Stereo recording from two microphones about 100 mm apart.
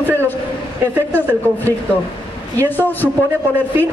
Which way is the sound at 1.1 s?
20° left (ahead or behind).